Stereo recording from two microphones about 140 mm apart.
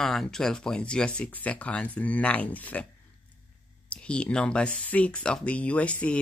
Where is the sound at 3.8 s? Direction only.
5° left (ahead or behind).